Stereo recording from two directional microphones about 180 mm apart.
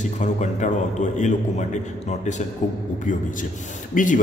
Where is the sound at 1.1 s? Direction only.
40° left (ahead or behind).